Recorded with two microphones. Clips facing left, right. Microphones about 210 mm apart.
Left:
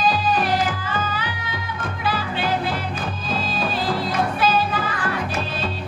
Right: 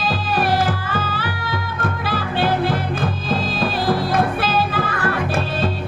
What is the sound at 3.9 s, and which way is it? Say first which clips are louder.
Music: right 6 dB; 50° right (ahead or behind).